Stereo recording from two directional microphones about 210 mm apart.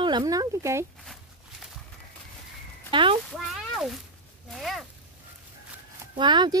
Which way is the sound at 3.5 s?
Centre (ahead or behind).